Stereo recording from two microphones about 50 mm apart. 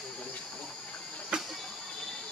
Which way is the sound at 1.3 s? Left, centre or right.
Centre.